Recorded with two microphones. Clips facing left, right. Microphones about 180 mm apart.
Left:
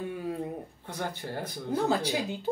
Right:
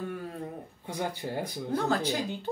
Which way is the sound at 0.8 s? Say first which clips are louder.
Right 3 dB; 10° right (ahead or behind).